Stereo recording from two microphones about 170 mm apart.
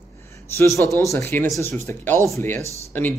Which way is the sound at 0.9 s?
15° left (ahead or behind).